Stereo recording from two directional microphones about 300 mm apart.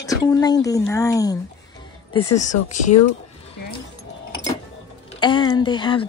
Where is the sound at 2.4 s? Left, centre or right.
Left.